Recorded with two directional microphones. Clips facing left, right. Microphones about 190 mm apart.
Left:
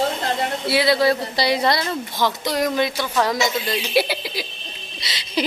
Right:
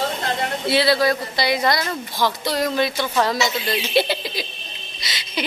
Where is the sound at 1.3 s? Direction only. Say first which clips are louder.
Left 1 dB; 35° left (ahead or behind).